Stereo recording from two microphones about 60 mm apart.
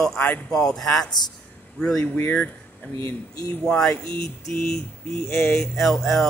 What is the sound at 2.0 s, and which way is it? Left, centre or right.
Speech, left.